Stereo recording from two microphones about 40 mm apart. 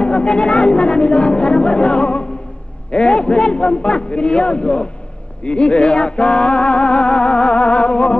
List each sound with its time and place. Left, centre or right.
0.0 s music: left